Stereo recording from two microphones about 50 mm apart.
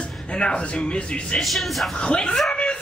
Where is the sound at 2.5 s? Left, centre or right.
Left.